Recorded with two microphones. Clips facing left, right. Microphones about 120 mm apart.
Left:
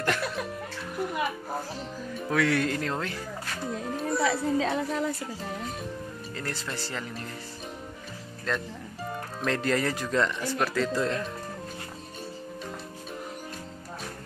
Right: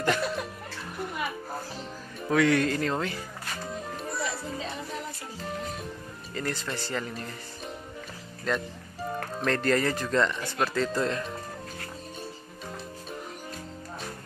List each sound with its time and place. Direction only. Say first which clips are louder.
0.0 s music: right 2 dB; centre (ahead or behind)
2.1 s speech: right 3 dB; centre (ahead or behind)
4.2 s music: left 10 dB; 90° left
6.3 s speech: right 4 dB; centre (ahead or behind)
8.5 s speech: right 2 dB; 5° right (ahead or behind)